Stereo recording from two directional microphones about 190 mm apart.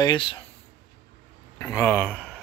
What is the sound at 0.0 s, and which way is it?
Speech, 25° left (ahead or behind).